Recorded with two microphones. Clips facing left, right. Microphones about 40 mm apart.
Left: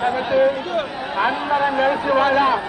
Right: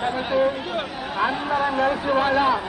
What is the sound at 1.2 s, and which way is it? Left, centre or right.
Speech, centre.